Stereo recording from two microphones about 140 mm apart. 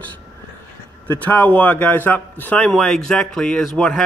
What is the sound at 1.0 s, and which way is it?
A man's voice, 10° left (ahead or behind).